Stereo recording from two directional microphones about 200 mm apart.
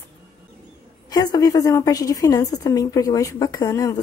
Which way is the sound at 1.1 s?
20° left (ahead or behind).